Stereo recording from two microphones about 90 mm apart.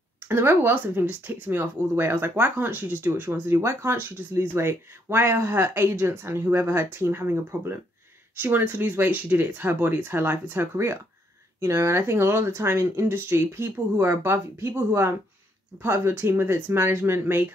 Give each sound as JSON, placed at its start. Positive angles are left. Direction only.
{"t": 0.3, "sound": "speech", "side_deg": -25}